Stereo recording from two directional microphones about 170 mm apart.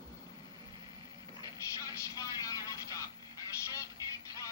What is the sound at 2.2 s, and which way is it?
Vehicle, 20° left (ahead or behind).